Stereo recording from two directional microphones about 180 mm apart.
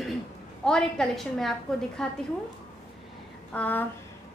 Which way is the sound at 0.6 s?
5° left (ahead or behind).